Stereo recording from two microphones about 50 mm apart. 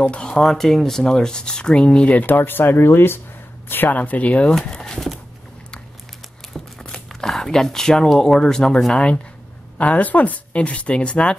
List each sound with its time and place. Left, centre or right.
0.1 s speech: left
0.4 s speech: centre
2.0 s speech: left
4.6 s a sound: centre
6.5 s a sound: centre
8.9 s speech: left